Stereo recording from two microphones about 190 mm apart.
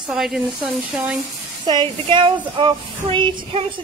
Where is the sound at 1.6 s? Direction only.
25° right (ahead or behind).